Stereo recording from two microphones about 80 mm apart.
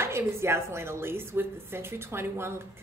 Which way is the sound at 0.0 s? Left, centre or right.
Right.